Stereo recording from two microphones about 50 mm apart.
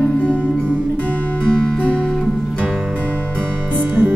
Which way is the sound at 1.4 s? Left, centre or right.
Centre.